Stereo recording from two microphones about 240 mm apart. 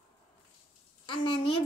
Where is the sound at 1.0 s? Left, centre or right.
Centre.